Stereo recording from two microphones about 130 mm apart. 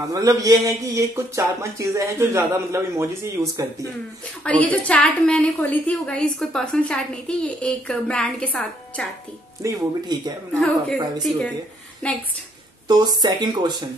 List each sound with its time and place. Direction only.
0.1 s speech: 25° right (ahead or behind)
3.4 s a woman's voice: centre (ahead or behind)
9.6 s speech: 30° right (ahead or behind)
10.5 s a woman's voice: 5° left (ahead or behind)
12.8 s speech: 30° right (ahead or behind)